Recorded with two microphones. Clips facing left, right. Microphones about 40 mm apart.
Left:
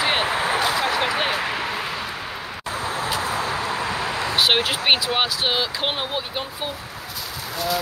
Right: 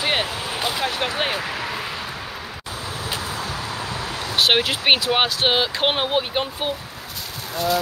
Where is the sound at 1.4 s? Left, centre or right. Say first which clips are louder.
Left 2 dB; centre.